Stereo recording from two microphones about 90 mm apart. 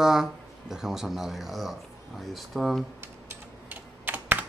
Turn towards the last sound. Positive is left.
turn(degrees=-20)  # may be behind; listen again after turning